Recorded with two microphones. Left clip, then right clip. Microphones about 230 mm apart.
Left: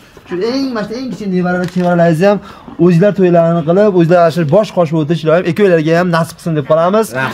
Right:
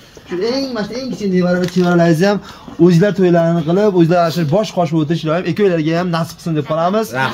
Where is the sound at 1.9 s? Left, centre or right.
Left.